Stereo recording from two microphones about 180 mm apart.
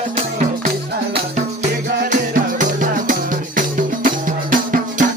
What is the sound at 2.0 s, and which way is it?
Music, 45° right (ahead or behind).